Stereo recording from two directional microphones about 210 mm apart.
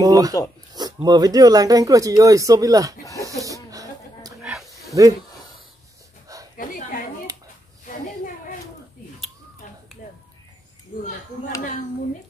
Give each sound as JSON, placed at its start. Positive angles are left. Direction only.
{"t": 0.0, "sound": "speech", "side_deg": -15}
{"t": 3.2, "sound": "snake", "side_deg": -15}
{"t": 4.4, "sound": "snake", "side_deg": 0}
{"t": 6.5, "sound": "a sound", "side_deg": 40}